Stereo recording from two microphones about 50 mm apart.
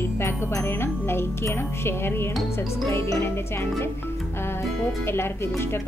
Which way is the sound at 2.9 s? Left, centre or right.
Left.